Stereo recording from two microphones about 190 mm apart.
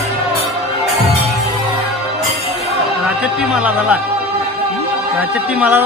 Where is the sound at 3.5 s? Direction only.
5° right (ahead or behind).